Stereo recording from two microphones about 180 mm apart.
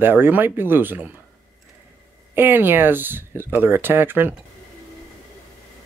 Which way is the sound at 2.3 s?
10° right (ahead or behind).